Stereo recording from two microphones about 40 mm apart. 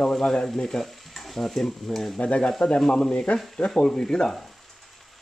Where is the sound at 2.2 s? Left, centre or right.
Left.